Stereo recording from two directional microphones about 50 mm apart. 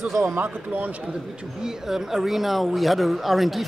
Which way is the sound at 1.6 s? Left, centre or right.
Centre.